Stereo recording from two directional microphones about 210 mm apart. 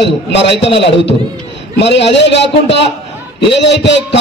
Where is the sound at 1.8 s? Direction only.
55° left (ahead or behind).